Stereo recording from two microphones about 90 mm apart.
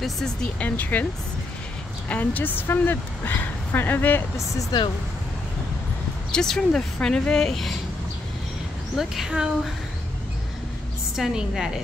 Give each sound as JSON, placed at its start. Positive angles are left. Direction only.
{"t": 0.0, "sound": "speech", "side_deg": 5}
{"t": 2.0, "sound": "speech", "side_deg": 20}
{"t": 4.7, "sound": "speech", "side_deg": 50}
{"t": 6.3, "sound": "speech", "side_deg": 5}
{"t": 8.9, "sound": "speech", "side_deg": -5}
{"t": 11.1, "sound": "speech", "side_deg": -5}